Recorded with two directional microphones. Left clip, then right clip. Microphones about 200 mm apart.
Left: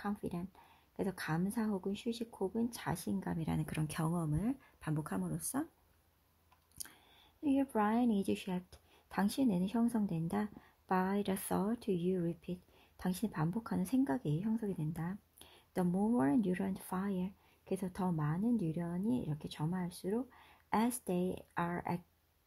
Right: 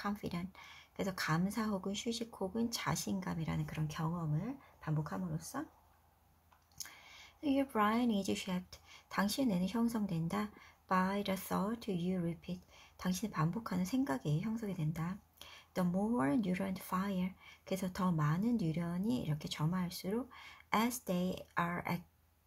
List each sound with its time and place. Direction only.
0.0 s speech: 30° left (ahead or behind); by 5.7 s 60° left (ahead or behind)
7.4 s speech: 25° left (ahead or behind)